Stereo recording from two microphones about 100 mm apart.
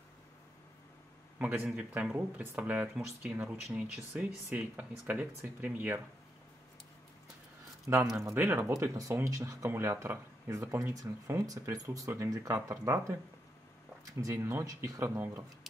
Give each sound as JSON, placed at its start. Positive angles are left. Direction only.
{"t": 1.4, "sound": "speech", "side_deg": -15}
{"t": 7.9, "sound": "speech", "side_deg": -25}
{"t": 14.3, "sound": "speech", "side_deg": -20}
{"t": 14.6, "sound": "speech", "side_deg": -35}